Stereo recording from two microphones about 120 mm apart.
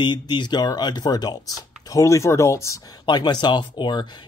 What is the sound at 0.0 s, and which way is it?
Speech, 40° left (ahead or behind).